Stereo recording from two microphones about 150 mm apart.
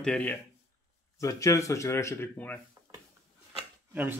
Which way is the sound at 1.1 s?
20° left (ahead or behind).